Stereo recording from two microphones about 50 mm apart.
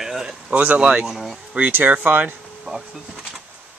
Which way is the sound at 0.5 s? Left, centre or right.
Right.